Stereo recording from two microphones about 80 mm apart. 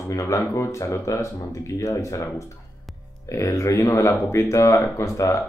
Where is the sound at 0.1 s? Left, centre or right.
Left.